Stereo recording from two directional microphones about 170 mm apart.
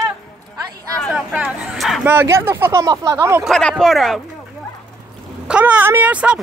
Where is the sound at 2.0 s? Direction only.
15° right (ahead or behind).